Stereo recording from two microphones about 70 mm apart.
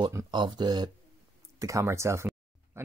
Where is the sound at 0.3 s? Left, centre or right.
Right.